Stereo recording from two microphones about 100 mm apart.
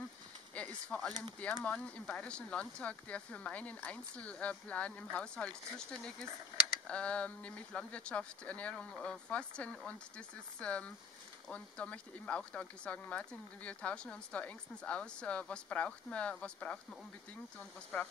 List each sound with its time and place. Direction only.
0.6 s speech: 10° left (ahead or behind)
17.9 s speech: 15° left (ahead or behind)